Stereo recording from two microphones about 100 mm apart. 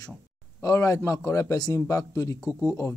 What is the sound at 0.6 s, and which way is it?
A man's voice, 35° left (ahead or behind).